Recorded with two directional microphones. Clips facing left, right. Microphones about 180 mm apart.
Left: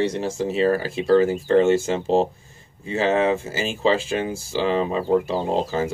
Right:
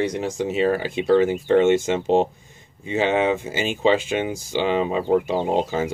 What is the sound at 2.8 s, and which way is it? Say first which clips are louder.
Speech: even; 30° left (ahead or behind).